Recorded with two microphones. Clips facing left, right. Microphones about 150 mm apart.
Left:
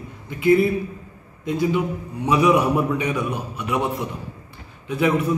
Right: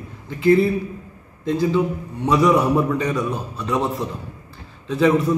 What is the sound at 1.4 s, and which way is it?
A man's voice, 5° left (ahead or behind).